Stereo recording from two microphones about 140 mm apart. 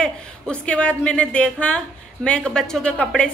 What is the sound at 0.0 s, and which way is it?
A woman's voice, 10° left (ahead or behind).